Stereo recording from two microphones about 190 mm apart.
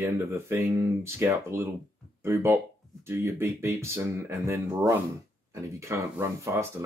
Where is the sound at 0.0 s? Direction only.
15° right (ahead or behind).